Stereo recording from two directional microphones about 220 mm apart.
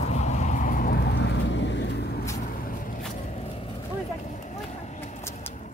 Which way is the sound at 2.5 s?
40° left (ahead or behind).